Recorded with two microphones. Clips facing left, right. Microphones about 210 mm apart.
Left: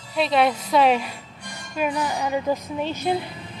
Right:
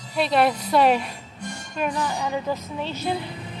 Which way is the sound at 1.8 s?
10° left (ahead or behind).